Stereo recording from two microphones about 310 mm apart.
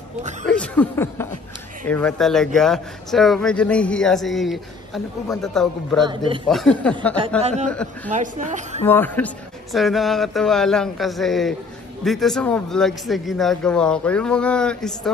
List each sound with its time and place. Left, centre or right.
0.5 s speech: centre
6.0 s a man's voice: centre
6.5 s speech: centre
7.2 s a woman's voice: right
8.8 s speech: centre